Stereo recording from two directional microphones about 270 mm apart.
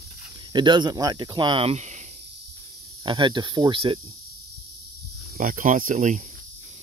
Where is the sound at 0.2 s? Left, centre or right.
Centre.